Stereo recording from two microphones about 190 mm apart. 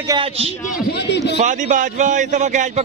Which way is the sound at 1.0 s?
60° left (ahead or behind).